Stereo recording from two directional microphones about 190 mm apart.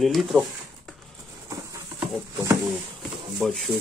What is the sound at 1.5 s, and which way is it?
Patter, 15° right (ahead or behind).